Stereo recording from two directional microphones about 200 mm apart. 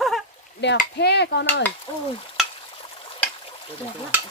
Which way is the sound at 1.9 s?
25° left (ahead or behind).